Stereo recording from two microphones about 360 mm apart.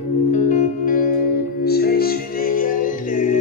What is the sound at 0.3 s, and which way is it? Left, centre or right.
Music, left.